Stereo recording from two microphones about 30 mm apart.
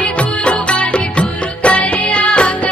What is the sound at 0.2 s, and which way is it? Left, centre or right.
Music, left.